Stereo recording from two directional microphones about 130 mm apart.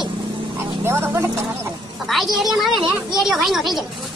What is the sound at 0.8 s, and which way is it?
Speech, 20° right (ahead or behind).